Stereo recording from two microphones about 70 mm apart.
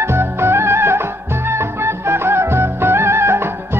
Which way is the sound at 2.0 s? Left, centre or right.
Right.